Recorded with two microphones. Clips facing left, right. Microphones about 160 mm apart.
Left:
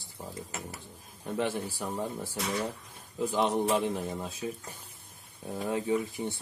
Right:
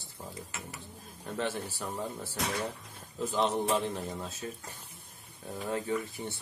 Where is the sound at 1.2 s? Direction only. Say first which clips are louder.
Left 3 dB; 15° left (ahead or behind).